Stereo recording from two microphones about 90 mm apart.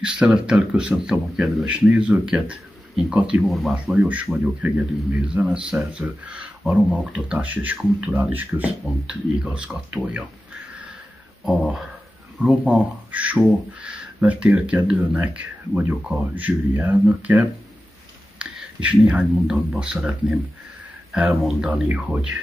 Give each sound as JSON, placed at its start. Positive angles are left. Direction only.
{"t": 0.0, "sound": "speech", "side_deg": -10}
{"t": 3.4, "sound": "speech", "side_deg": 0}
{"t": 3.7, "sound": "speech", "side_deg": -15}
{"t": 11.4, "sound": "speech", "side_deg": -10}